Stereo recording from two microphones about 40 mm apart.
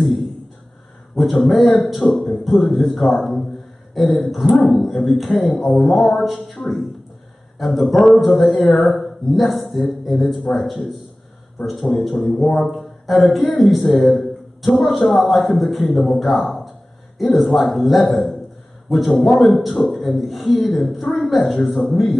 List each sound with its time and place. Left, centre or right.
1.1 s a man's voice: centre
7.9 s speech: centre
8.8 s a man's voice: centre